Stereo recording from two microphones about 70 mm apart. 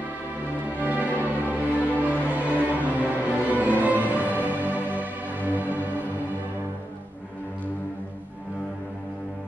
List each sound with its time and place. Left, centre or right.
0.7 s music: right